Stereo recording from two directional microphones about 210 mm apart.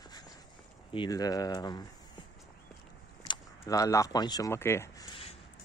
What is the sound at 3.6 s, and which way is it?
Speech, 15° left (ahead or behind).